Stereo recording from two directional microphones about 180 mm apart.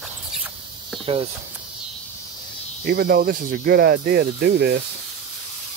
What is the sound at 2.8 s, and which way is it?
Speech, 55° right (ahead or behind).